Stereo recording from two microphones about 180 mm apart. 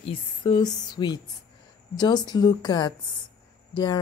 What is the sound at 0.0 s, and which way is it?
A woman's voice, 30° left (ahead or behind).